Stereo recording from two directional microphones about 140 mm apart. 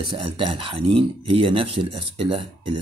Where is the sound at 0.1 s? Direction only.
35° right (ahead or behind).